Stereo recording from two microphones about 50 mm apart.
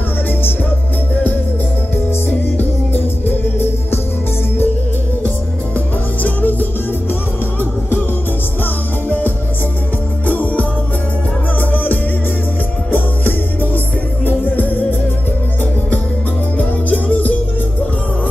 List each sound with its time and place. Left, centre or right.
2.2 s music: left
6.2 s music: left
10.2 s music: left
11.7 s music: left
16.5 s music: left